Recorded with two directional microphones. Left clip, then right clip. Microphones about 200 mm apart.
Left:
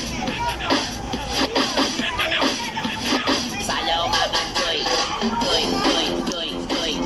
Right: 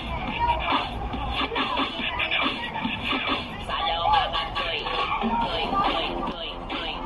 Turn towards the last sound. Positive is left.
turn(degrees=40)  # may be behind; listen again after turning